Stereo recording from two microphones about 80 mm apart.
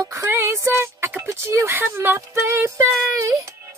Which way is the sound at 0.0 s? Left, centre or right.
Right.